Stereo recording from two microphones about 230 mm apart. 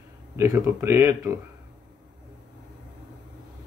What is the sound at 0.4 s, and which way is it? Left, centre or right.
Speech, centre.